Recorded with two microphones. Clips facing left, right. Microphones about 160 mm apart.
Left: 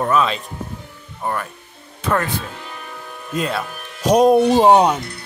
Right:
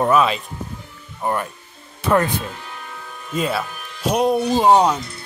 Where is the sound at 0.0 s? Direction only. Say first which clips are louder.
Right 2 dB; 10° right (ahead or behind).